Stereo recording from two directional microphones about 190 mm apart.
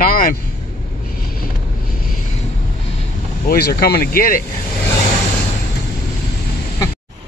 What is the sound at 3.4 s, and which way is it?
Speech, 55° left (ahead or behind).